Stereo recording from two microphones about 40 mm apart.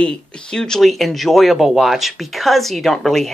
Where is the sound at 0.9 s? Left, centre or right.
Centre.